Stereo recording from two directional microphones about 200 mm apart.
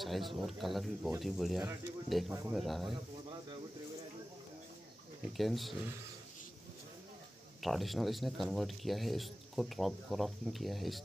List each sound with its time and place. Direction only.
0.0 s a man's voice: centre (ahead or behind)
2.9 s snake: 20° right (ahead or behind)
5.4 s a man's voice: centre (ahead or behind)
7.6 s a man's voice: centre (ahead or behind)